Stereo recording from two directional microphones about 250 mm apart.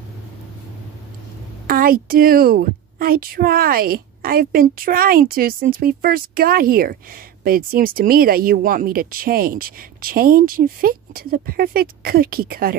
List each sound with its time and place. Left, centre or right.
1.7 s a woman's voice: right